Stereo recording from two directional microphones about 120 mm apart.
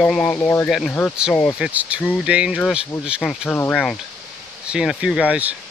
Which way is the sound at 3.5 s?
10° left (ahead or behind).